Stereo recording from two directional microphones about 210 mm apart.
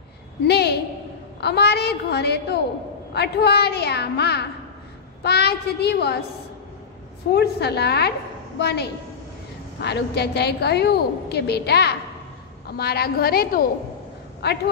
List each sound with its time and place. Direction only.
0.5 s a woman's voice: 50° left (ahead or behind)
7.3 s a woman's voice: 50° left (ahead or behind)